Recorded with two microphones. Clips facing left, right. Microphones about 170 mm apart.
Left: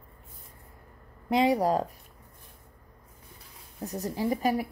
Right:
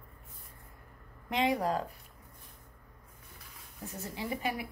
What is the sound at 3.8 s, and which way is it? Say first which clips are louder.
Speech: left 9 dB; 40° left (ahead or behind).